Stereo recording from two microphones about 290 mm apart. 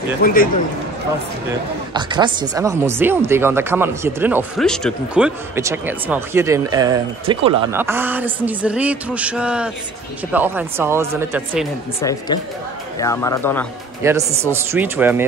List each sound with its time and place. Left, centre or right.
0.2 s a man's voice: left
2.0 s speech: centre
12.0 s speech: centre
14.0 s speech: centre